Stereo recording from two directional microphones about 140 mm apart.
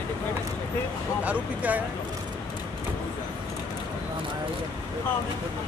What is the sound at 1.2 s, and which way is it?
Speech, 10° right (ahead or behind).